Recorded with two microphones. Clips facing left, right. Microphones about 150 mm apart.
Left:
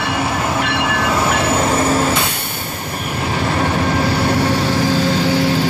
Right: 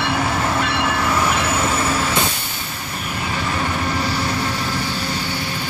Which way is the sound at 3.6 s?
55° left (ahead or behind).